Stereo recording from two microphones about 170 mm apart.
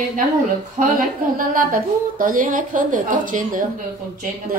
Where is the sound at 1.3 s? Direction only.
55° right (ahead or behind).